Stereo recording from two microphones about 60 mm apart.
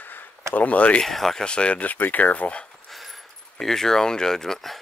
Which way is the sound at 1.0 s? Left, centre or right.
Centre.